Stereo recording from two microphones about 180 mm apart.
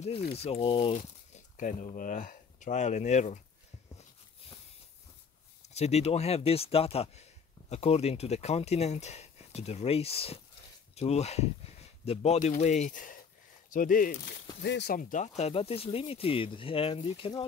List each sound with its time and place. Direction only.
0.3 s speech: 35° left (ahead or behind)
5.7 s speech: 35° left (ahead or behind)